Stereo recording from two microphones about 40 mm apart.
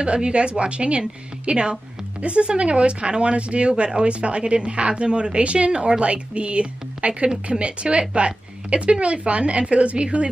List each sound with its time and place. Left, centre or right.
0.0 s a woman's voice: right